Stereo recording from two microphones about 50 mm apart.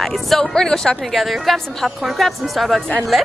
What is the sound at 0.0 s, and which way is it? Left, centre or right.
Speech, centre.